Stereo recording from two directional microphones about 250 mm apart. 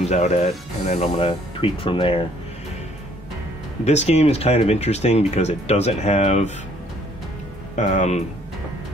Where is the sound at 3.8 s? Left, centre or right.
Left.